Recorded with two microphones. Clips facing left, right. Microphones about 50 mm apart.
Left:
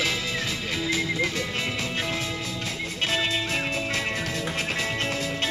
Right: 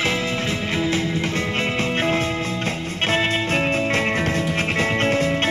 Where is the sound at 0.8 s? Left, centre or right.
Right.